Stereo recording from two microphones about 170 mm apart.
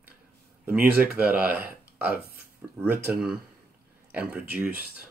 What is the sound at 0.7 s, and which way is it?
Speech, 10° right (ahead or behind).